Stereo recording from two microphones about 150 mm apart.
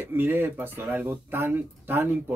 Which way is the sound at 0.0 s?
15° right (ahead or behind).